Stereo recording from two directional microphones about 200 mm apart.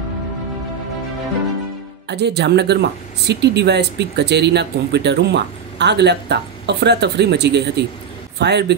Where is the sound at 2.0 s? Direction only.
55° right (ahead or behind).